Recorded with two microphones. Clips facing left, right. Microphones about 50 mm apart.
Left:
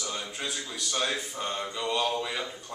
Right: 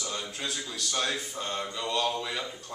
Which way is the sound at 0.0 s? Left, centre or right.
Centre.